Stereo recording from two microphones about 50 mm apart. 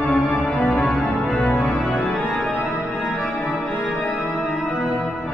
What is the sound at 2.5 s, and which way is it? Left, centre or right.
Organ, right.